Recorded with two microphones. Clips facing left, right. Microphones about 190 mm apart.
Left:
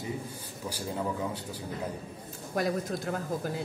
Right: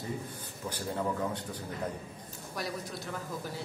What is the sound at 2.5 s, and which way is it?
Speech, 55° left (ahead or behind).